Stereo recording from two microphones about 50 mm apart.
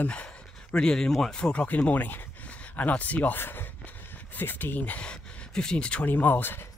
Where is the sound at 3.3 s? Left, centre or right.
Left.